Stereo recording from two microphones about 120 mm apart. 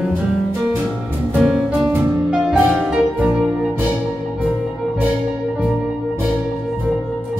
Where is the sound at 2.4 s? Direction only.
10° right (ahead or behind).